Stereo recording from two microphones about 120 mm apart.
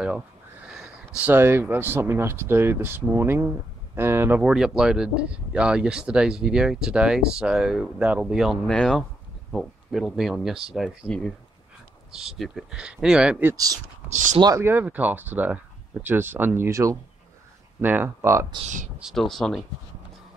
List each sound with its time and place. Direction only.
0.7 s a sound: 10° right (ahead or behind)
1.3 s speech: 20° right (ahead or behind)
4.4 s speech: 5° right (ahead or behind)
14.0 s speech: 85° right
14.6 s speech: 15° right (ahead or behind)
18.9 s speech: centre (ahead or behind)